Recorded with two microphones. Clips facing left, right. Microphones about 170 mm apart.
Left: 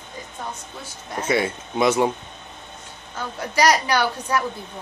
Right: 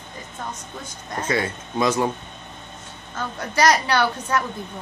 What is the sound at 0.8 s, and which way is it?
A woman's voice, 10° left (ahead or behind).